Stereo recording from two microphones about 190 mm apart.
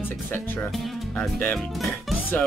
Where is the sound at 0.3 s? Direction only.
10° left (ahead or behind).